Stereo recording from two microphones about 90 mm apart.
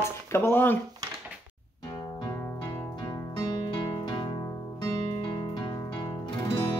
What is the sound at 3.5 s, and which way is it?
Music, 55° left (ahead or behind).